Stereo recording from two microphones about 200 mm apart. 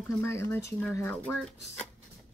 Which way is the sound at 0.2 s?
10° left (ahead or behind).